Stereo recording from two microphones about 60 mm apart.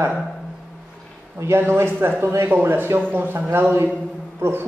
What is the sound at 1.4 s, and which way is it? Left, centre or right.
Speech, right.